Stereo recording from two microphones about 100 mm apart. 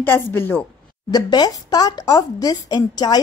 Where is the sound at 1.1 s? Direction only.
45° left (ahead or behind).